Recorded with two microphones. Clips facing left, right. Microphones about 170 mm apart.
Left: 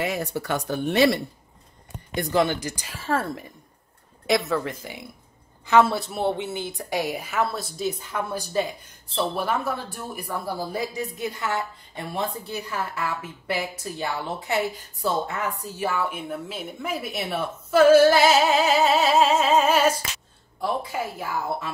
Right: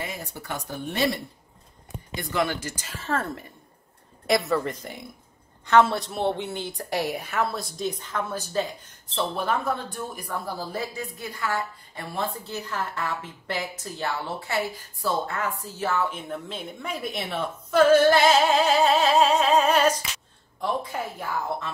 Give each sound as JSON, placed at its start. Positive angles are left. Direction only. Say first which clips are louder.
{"t": 0.0, "sound": "speech", "louder": "left 8 dB", "side_deg": 75}
{"t": 2.3, "sound": "a woman's voice", "louder": "left 4 dB", "side_deg": 20}
{"t": 4.3, "sound": "a woman's voice", "louder": "even", "side_deg": 0}